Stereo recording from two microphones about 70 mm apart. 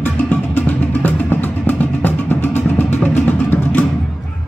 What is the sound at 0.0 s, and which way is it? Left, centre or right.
Music, left.